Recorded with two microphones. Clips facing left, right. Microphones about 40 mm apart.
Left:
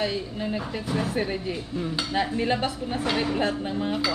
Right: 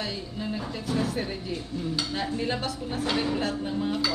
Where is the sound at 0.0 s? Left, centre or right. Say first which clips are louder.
Left 5 dB; left.